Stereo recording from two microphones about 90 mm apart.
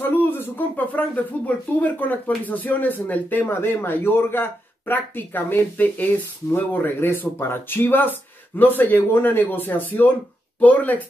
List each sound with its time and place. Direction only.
0.0 s speech: 25° left (ahead or behind)